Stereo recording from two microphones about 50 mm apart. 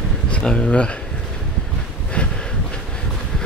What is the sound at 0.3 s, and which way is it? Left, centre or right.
Speech, left.